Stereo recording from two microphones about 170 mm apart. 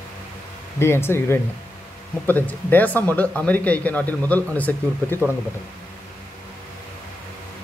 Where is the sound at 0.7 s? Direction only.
15° left (ahead or behind).